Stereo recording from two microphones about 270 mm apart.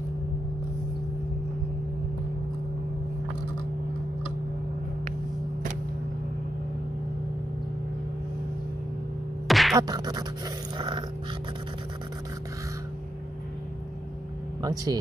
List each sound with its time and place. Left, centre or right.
9.5 s music: centre
9.8 s scratch: centre
10.8 s dog: centre
14.6 s scratch: centre